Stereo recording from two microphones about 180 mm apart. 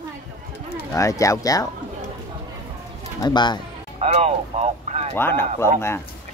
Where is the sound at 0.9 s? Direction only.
15° left (ahead or behind).